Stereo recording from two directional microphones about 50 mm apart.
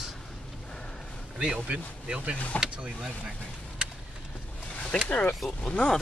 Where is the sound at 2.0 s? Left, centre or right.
Right.